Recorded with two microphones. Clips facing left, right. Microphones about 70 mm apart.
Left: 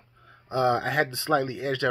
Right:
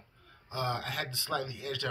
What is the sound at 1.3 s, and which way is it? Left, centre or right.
Speech, left.